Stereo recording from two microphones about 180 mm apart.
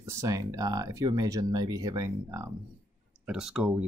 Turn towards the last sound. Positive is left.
turn(degrees=-5)  # may be behind; listen again after turning